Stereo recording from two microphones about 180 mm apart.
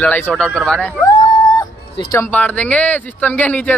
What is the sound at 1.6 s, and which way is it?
Music, 20° left (ahead or behind).